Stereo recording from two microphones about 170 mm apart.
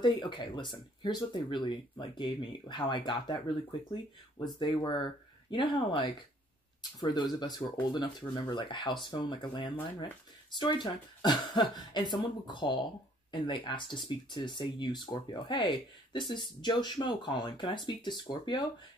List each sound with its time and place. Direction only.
0.0 s speech: 25° left (ahead or behind)